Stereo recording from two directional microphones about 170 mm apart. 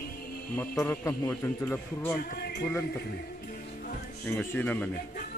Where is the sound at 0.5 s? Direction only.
10° left (ahead or behind).